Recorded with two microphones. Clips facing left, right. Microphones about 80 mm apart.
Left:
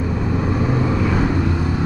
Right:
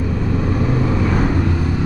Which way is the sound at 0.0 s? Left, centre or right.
Centre.